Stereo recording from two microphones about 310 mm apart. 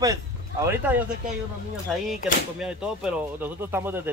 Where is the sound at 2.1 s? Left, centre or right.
Centre.